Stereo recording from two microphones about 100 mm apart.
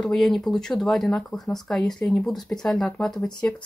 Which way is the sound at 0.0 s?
Centre (ahead or behind).